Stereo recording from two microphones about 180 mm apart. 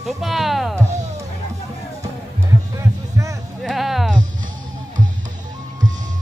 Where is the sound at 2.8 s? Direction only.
15° right (ahead or behind).